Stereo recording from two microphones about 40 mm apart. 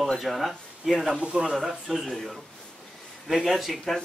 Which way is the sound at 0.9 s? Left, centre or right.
Right.